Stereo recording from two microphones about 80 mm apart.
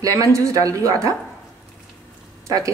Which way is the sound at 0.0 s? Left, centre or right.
Right.